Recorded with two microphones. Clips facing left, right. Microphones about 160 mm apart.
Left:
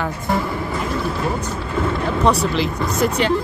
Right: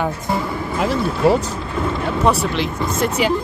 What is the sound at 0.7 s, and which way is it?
Vehicle, 90° right.